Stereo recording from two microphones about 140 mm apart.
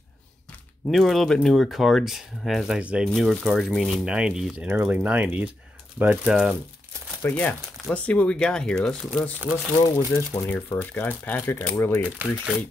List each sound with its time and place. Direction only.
0.8 s speech: centre (ahead or behind)
7.2 s speech: 10° left (ahead or behind)
9.8 s speech: 20° left (ahead or behind)
12.0 s speech: 10° right (ahead or behind)